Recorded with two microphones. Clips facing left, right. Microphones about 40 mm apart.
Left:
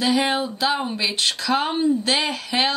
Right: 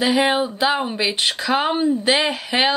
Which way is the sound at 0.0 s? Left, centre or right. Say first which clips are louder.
Right 3 dB; centre.